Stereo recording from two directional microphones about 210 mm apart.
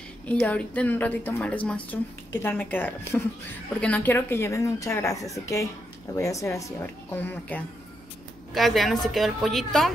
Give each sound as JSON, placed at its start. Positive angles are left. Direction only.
{"t": 0.3, "sound": "a woman's voice", "side_deg": 5}